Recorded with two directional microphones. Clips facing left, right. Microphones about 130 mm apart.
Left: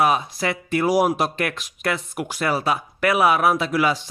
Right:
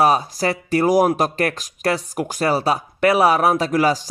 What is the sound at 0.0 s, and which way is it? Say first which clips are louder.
A man's voice: right 3 dB; 35° right (ahead or behind).